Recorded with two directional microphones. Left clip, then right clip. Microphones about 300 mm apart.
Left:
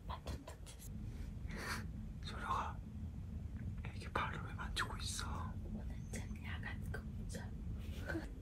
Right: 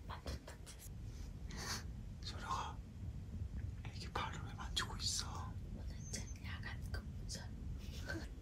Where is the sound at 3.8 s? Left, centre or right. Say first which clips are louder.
Left 3 dB; centre.